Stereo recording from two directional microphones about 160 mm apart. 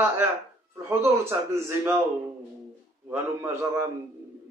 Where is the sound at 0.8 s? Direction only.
15° right (ahead or behind).